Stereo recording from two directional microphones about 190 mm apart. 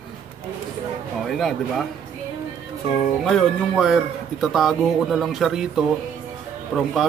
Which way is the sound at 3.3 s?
Centre (ahead or behind).